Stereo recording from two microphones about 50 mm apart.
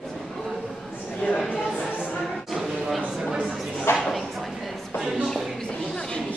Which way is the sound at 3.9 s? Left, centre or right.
Left.